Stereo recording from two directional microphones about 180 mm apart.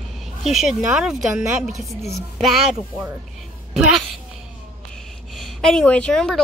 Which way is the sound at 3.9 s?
Centre (ahead or behind).